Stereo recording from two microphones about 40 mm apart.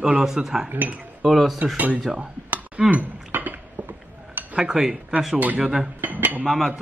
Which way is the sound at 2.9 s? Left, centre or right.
Right.